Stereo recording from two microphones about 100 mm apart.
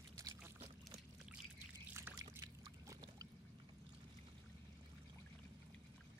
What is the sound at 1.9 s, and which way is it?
Trickle, 25° right (ahead or behind).